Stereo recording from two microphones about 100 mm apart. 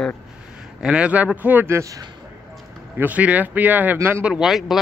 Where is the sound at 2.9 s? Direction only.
15° right (ahead or behind).